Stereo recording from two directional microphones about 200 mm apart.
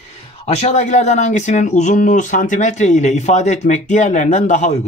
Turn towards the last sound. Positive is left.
turn(degrees=35)  # may be behind; listen again after turning